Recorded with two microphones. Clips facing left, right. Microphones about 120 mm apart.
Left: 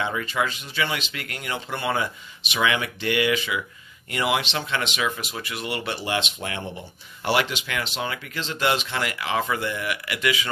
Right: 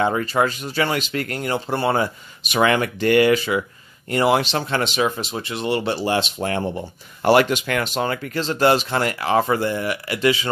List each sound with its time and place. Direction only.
0.0 s speech: 40° right (ahead or behind)